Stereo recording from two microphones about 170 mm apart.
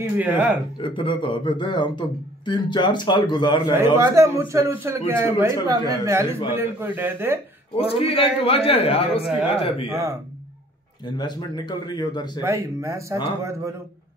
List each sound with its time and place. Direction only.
0.2 s a man's voice: 10° right (ahead or behind)
0.7 s speech: 30° left (ahead or behind)
3.7 s a man's voice: 15° right (ahead or behind)
7.9 s a man's voice: 35° left (ahead or behind)
9.8 s speech: 20° right (ahead or behind)
11.1 s speech: 25° left (ahead or behind)
12.4 s a man's voice: 20° right (ahead or behind)